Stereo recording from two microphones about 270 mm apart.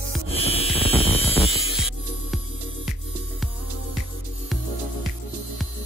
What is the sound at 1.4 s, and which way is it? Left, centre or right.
Hum, centre.